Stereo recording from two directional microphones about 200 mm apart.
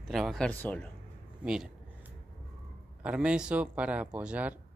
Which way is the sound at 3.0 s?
5° right (ahead or behind).